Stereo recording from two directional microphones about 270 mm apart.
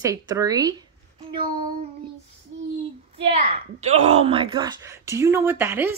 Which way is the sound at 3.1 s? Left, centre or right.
Right.